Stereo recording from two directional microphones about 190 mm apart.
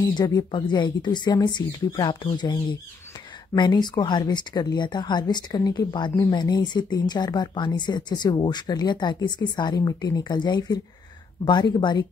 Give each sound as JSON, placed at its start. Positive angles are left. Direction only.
{"t": 0.1, "sound": "speech", "side_deg": 20}